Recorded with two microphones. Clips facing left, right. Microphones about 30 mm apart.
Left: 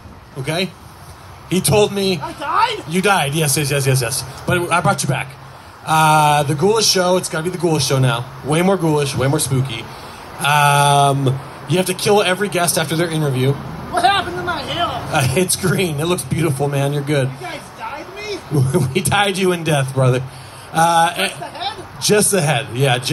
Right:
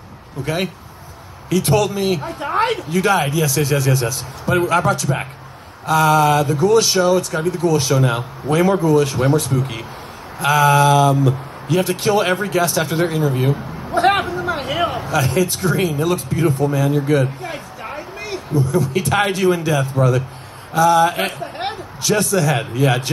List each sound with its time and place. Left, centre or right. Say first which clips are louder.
0.4 s a man's voice: left 1 dB; left